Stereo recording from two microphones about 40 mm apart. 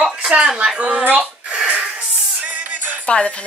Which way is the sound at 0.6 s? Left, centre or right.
Right.